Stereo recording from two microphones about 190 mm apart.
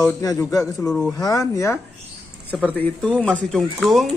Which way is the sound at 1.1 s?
20° left (ahead or behind).